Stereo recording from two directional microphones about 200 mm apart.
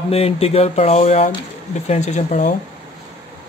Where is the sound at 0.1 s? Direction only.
30° left (ahead or behind).